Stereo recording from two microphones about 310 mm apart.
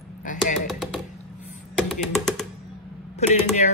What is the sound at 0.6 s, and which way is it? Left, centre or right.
Music, centre.